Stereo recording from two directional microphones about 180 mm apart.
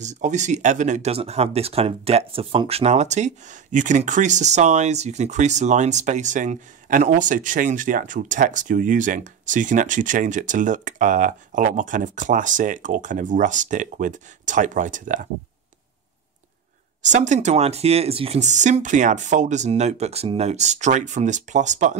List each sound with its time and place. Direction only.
0.0 s speech: 40° right (ahead or behind)
17.0 s speech: 40° right (ahead or behind)